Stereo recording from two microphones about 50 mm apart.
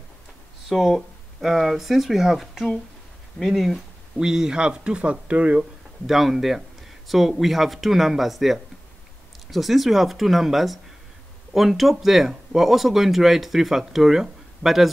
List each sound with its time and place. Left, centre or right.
0.7 s speech: centre; by 5.6 s right
5.6 s speech: centre